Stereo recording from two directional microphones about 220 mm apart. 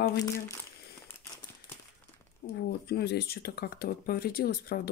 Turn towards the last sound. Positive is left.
turn(degrees=45)  # may be behind; listen again after turning